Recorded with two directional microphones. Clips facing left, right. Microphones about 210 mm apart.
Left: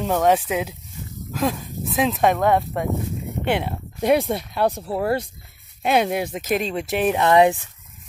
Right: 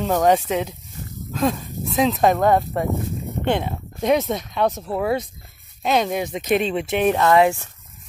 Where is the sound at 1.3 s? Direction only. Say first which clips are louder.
Right 2 dB; 5° left (ahead or behind).